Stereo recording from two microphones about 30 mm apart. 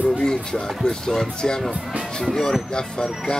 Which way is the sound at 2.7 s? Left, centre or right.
Left.